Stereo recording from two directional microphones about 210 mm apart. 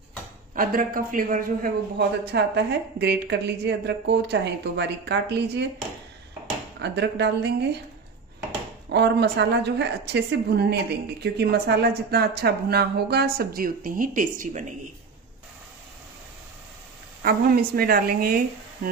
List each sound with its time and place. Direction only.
0.6 s a woman's voice: 40° right (ahead or behind)
6.8 s a woman's voice: 55° right (ahead or behind)
8.8 s a woman's voice: 55° right (ahead or behind)
17.2 s a woman's voice: 45° right (ahead or behind)